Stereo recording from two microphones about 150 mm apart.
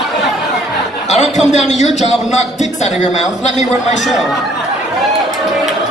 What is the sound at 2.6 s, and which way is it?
A man's voice, 50° left (ahead or behind).